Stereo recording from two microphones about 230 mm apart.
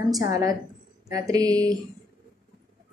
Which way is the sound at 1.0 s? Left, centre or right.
Centre.